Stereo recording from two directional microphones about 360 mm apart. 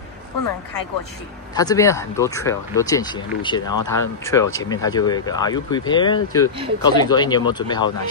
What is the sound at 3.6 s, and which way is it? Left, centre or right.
Speech, left.